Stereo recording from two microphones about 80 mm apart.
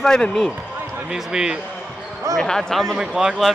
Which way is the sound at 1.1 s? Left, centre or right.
Centre.